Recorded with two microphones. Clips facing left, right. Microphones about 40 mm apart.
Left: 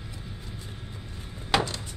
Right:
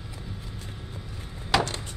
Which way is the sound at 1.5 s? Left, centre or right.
Centre.